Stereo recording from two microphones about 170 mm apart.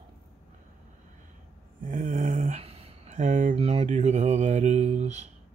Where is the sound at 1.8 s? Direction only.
50° right (ahead or behind).